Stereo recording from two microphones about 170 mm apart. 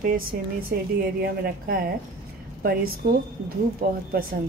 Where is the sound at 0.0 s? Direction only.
55° right (ahead or behind).